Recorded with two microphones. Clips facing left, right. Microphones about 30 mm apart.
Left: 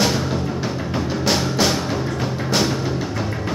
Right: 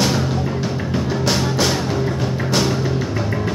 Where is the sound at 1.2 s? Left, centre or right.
Centre.